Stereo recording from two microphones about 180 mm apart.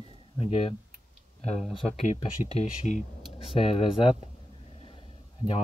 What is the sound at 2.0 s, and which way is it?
Speech, 40° left (ahead or behind).